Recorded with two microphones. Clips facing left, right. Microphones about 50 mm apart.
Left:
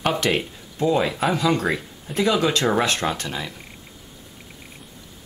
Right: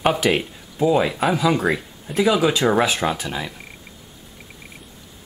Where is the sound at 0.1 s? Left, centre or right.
Centre.